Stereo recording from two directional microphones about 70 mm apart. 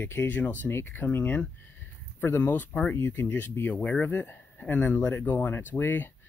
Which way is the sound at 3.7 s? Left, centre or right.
Centre.